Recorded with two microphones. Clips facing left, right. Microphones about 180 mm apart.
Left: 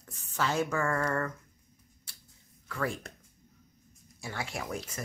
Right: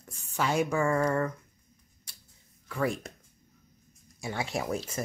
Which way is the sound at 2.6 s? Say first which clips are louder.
Right 4 dB; 15° right (ahead or behind).